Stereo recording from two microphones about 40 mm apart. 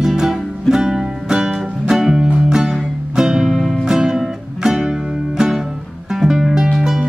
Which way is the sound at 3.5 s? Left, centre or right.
Centre.